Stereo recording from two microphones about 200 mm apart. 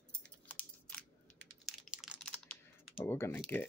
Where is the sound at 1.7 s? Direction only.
5° right (ahead or behind).